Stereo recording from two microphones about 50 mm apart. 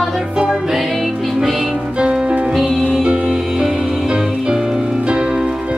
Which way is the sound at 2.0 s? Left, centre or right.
Centre.